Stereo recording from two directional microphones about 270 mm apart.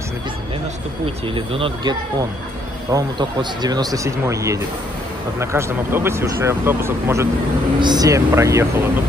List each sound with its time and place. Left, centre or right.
1.0 s speech: centre